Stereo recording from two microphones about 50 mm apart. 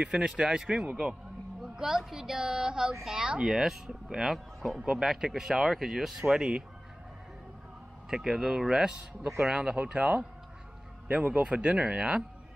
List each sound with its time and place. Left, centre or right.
0.0 s speech: centre
3.4 s speech: centre
8.1 s speech: centre